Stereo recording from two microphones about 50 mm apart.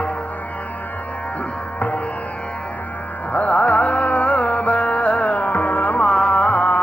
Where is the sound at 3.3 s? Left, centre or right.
Left.